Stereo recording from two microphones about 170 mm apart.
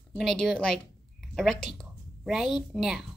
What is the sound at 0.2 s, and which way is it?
A woman's voice, centre (ahead or behind).